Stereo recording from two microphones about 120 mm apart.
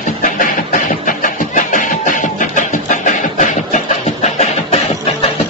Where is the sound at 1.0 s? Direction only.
90° left; by 4.7 s 70° left (ahead or behind).